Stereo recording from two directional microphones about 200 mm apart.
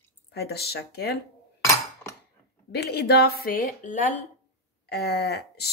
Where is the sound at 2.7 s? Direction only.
55° left (ahead or behind).